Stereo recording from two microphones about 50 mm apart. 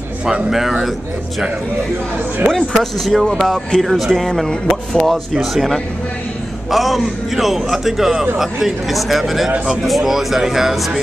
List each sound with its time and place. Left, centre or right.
0.2 s speech: centre
0.6 s a man's voice: centre
2.5 s speech: centre
3.8 s a man's voice: centre
4.1 s a man's voice: centre